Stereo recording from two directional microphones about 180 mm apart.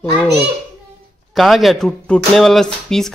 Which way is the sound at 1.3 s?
Centre (ahead or behind).